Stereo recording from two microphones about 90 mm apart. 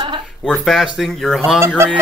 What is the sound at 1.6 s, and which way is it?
Speech, 30° right (ahead or behind).